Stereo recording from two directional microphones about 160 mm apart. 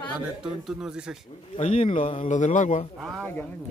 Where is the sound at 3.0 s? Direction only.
Centre (ahead or behind).